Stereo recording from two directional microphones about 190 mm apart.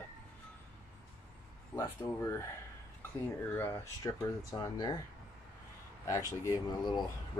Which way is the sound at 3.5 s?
10° left (ahead or behind).